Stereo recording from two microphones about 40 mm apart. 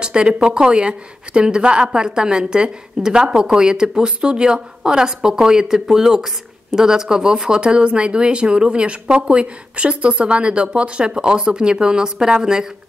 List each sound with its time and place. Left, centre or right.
0.0 s speech: right